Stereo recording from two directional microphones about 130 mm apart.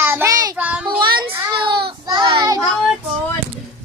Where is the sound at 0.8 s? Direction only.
35° right (ahead or behind).